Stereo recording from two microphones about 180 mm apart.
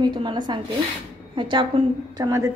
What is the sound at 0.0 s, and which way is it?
A woman's voice, 25° right (ahead or behind).